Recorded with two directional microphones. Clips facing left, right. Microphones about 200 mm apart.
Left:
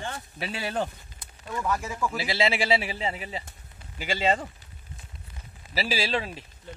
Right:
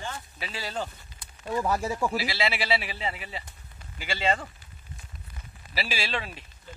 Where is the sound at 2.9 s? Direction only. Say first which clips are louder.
Left 3 dB; 35° left (ahead or behind).